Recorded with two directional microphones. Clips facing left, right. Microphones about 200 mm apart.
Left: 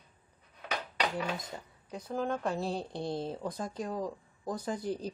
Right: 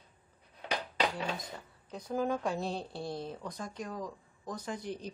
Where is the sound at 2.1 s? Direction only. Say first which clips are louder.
Right 1 dB; centre (ahead or behind).